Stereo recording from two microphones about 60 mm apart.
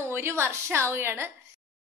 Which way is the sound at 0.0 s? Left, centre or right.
Right.